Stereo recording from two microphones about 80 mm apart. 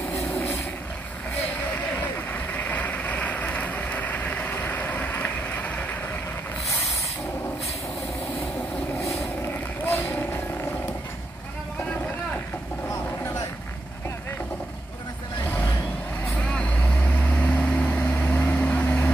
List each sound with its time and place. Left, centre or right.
2.0 s vehicle: left
9.5 s vehicle: left
16.5 s vehicle: centre